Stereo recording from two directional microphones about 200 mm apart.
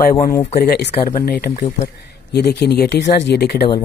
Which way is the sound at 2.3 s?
55° left (ahead or behind).